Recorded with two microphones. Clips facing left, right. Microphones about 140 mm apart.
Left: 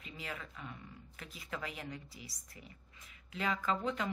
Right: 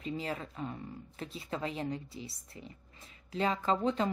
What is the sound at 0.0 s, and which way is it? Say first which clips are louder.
Speech: right 9 dB; 35° right (ahead or behind).